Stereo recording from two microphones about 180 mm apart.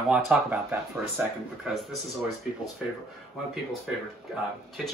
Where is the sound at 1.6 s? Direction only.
Centre (ahead or behind).